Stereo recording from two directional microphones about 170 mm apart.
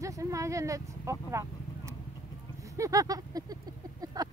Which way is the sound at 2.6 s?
20° right (ahead or behind).